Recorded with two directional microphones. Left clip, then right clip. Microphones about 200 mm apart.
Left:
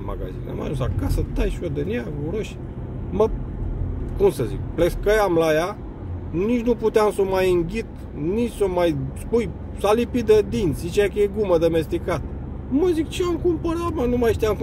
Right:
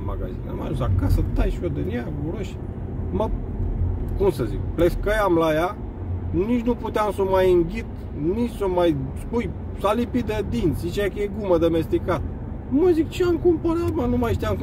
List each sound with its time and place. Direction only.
0.6 s speech: 25° left (ahead or behind)
4.2 s speech: 25° left (ahead or behind)